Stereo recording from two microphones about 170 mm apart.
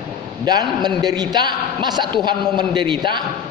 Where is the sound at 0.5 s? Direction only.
25° right (ahead or behind).